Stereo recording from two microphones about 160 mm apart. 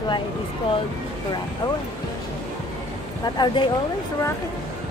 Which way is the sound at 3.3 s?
30° left (ahead or behind).